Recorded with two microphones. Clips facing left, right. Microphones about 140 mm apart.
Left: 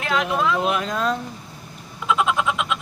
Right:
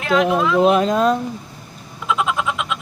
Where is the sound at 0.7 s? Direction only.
25° right (ahead or behind).